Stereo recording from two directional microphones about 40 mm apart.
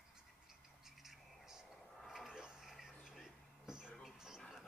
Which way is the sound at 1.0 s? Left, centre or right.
Centre.